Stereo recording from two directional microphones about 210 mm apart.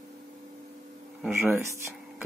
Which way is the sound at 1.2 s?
10° right (ahead or behind).